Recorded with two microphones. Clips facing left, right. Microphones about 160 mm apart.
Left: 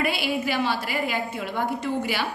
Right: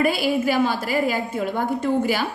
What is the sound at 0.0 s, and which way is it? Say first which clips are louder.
A woman's voice: right 5 dB; 45° right (ahead or behind).